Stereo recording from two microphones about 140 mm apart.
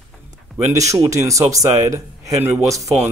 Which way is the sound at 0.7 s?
20° right (ahead or behind).